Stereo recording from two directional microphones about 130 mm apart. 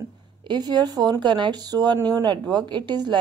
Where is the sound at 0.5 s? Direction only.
35° right (ahead or behind).